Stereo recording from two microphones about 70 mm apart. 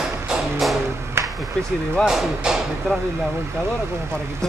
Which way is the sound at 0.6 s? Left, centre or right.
Centre.